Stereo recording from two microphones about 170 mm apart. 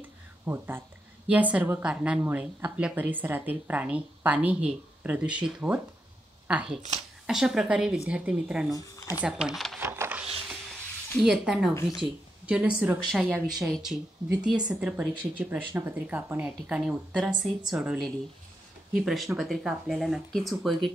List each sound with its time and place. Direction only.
0.0 s a sound: 15° right (ahead or behind)
1.3 s a woman's voice: 10° right (ahead or behind)
8.7 s speech: 20° left (ahead or behind)
9.2 s speech: 5° right (ahead or behind)
9.8 s a sound: 15° right (ahead or behind)
11.1 s speech: centre (ahead or behind)